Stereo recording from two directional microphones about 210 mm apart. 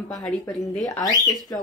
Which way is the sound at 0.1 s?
Centre (ahead or behind).